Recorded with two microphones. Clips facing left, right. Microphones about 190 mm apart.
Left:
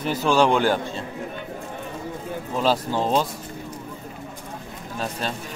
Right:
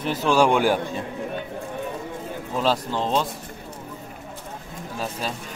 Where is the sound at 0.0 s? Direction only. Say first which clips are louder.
Even; centre (ahead or behind).